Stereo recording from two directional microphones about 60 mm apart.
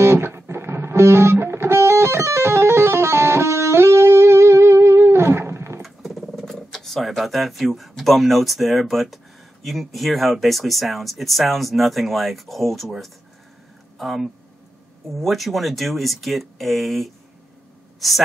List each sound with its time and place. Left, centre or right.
0.0 s music: right
5.8 s a sound: centre
8.0 s speech: centre